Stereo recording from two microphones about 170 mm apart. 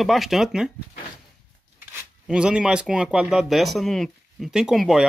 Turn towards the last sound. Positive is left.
turn(degrees=0)  # may be behind; listen again after turning